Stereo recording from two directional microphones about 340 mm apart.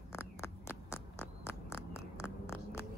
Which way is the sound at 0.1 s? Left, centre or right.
Centre.